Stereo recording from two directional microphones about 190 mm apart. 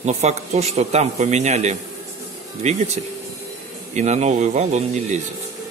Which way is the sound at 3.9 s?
35° right (ahead or behind).